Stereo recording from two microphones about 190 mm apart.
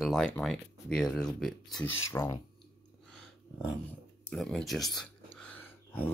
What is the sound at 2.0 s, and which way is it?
Speech, 15° left (ahead or behind).